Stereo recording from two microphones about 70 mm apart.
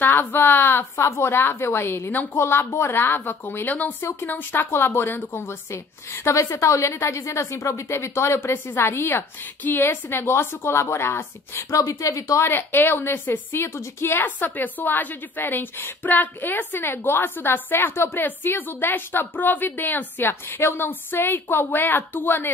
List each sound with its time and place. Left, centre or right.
0.0 s a woman's voice: left
0.9 s a woman's voice: left
9.6 s a woman's voice: left
11.7 s a woman's voice: left
12.4 s a woman's voice: left